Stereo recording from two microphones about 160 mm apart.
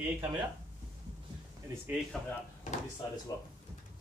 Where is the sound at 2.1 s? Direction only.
5° left (ahead or behind).